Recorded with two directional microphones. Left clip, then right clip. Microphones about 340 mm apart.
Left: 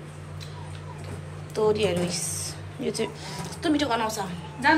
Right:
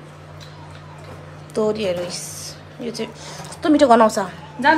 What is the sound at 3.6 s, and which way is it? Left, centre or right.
A woman's voice, centre.